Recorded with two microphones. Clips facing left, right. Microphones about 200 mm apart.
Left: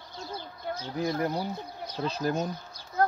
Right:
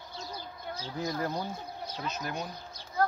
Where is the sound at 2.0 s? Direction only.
30° left (ahead or behind).